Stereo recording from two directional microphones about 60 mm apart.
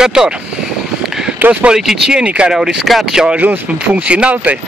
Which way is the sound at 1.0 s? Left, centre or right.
Centre.